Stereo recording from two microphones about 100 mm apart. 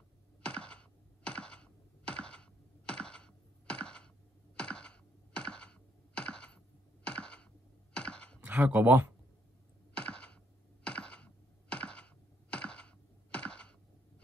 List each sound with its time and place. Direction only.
0.4 s computer keyboard: 10° left (ahead or behind)
7.1 s a sound: 10° left (ahead or behind)
7.9 s computer keyboard: 10° left (ahead or behind)
8.5 s speech: 15° right (ahead or behind)
9.9 s computer keyboard: 10° left (ahead or behind)